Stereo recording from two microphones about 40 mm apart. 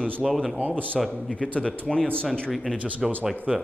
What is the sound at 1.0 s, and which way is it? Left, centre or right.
Speech, centre.